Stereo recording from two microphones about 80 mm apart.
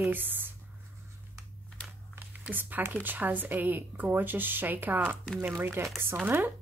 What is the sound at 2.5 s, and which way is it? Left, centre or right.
Speech, right.